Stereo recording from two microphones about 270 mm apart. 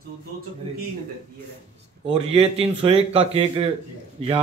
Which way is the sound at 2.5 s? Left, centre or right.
Right.